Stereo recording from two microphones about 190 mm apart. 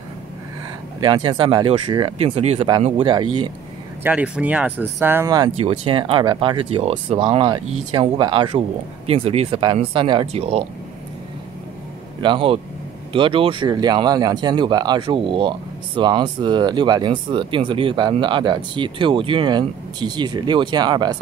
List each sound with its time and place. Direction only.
1.0 s speech: 25° right (ahead or behind)
4.0 s speech: 10° right (ahead or behind)
5.6 s speech: 30° right (ahead or behind)
12.2 s speech: 25° right (ahead or behind)